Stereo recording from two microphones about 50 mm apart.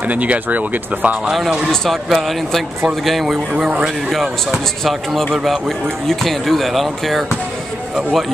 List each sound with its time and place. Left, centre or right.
0.1 s speech: right
1.2 s speech: centre
1.7 s speech: centre
4.8 s speech: centre